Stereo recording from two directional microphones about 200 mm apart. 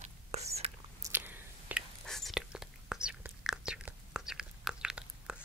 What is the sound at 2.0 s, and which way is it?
Whispering, centre (ahead or behind).